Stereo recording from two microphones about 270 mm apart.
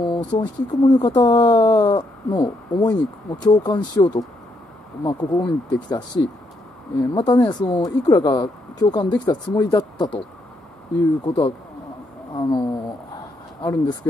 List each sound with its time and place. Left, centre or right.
0.3 s speech: centre
11.2 s speech: centre